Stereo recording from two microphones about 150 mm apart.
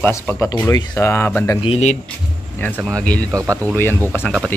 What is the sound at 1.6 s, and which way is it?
Speech, 45° left (ahead or behind).